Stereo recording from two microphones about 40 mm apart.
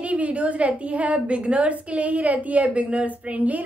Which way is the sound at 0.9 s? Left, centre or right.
Right.